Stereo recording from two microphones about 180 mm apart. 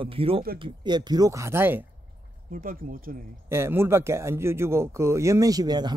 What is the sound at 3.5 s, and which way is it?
Speech, 15° right (ahead or behind).